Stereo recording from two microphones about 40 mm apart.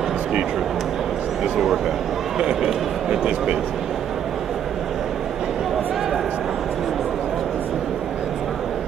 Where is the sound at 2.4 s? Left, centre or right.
Centre.